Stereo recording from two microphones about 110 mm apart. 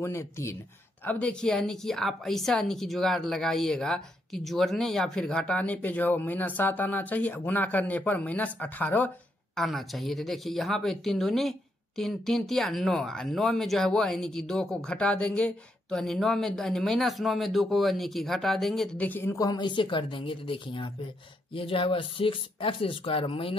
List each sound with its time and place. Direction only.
0.0 s speech: 25° left (ahead or behind)
1.0 s a woman's voice: 10° left (ahead or behind)
9.6 s speech: centre (ahead or behind)
18.9 s a woman's voice: 15° left (ahead or behind)
19.3 s speech: 35° left (ahead or behind); by 23.6 s 55° left (ahead or behind)